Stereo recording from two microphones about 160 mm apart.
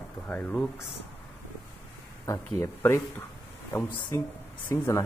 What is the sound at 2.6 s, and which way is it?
Speech, 20° left (ahead or behind).